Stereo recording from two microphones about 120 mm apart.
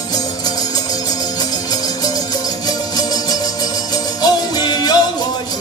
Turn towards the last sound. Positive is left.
turn(degrees=35)  # may be behind; listen again after turning